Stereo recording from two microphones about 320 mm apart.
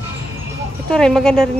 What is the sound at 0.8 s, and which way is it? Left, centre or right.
Speech, centre.